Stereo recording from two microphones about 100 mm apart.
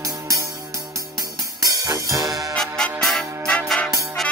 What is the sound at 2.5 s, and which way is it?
Music, 5° left (ahead or behind).